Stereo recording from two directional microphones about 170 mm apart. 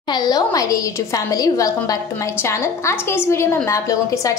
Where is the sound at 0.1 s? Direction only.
25° left (ahead or behind).